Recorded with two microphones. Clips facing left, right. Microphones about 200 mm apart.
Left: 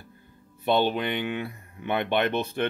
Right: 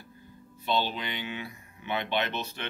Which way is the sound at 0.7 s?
55° left (ahead or behind).